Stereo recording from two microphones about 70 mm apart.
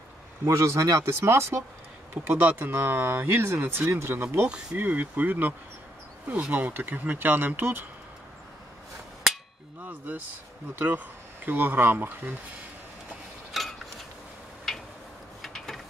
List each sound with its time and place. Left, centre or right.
0.5 s speech: right
2.2 s speech: right
9.3 s cap gun: centre
9.8 s speech: right
11.4 s speech: right
13.5 s a sound: centre